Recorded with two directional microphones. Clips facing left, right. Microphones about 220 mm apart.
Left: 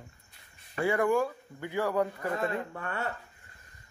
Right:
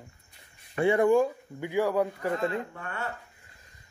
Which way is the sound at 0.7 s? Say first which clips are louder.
Right 5 dB; 25° right (ahead or behind).